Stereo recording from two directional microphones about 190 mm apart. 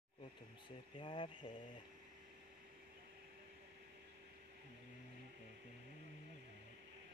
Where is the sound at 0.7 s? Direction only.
25° left (ahead or behind).